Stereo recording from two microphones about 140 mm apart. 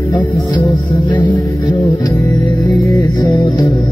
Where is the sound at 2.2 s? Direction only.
20° left (ahead or behind).